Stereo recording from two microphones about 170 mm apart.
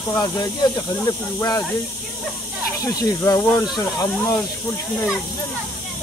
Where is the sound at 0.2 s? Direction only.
20° left (ahead or behind).